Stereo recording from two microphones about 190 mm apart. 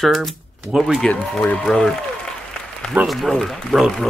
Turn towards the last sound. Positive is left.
turn(degrees=0)  # may be behind; listen again after turning